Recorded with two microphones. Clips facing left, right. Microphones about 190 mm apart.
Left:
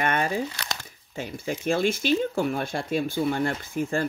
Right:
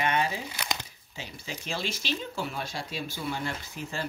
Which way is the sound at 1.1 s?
50° left (ahead or behind).